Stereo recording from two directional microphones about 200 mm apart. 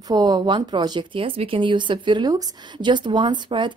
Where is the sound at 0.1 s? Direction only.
20° right (ahead or behind).